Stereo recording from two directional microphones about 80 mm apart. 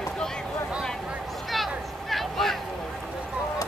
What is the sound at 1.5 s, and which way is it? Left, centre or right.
Vehicle, centre.